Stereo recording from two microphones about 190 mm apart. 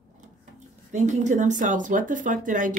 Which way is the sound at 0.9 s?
40° right (ahead or behind).